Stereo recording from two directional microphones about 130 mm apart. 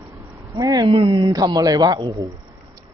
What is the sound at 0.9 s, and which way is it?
Speech, 50° right (ahead or behind).